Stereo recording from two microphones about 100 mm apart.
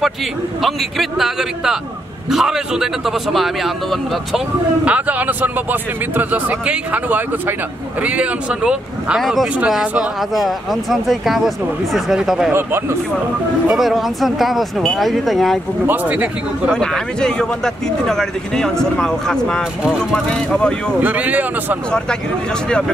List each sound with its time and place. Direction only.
0.6 s speech: centre (ahead or behind)
4.8 s speech: 15° right (ahead or behind)
9.2 s speech: centre (ahead or behind)
12.5 s speech: 25° right (ahead or behind)
13.7 s speech: centre (ahead or behind)
15.9 s speech: 15° right (ahead or behind)
16.7 s speech: 5° left (ahead or behind)
21.0 s speech: 15° right (ahead or behind)